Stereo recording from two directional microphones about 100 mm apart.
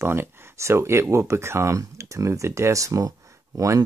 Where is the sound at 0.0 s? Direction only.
25° right (ahead or behind).